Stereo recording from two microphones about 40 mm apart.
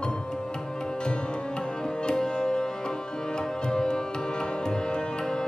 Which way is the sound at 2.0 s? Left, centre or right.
Centre.